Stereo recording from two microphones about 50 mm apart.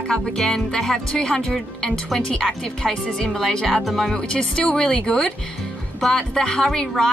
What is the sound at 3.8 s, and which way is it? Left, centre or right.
Speech, centre.